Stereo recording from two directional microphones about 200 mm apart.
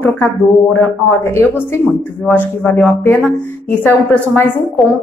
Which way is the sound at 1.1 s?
10° left (ahead or behind).